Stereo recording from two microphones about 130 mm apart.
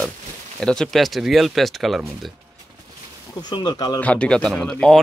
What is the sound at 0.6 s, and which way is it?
Speech, 5° left (ahead or behind).